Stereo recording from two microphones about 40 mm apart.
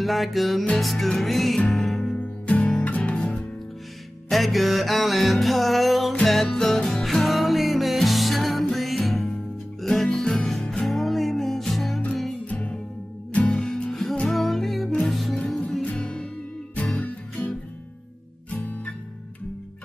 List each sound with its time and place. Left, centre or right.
0.0 s music: centre
2.1 s music: left
4.3 s music: centre
10.9 s music: centre
13.5 s music: centre
14.3 s music: centre
15.4 s music: left
16.0 s music: left
16.7 s music: left